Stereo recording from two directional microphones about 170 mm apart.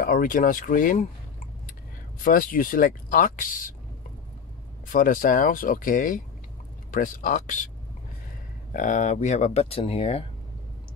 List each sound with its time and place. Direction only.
0.0 s speech: 55° left (ahead or behind)
2.2 s speech: 55° left (ahead or behind)
4.8 s speech: 50° left (ahead or behind)
8.7 s speech: 45° left (ahead or behind)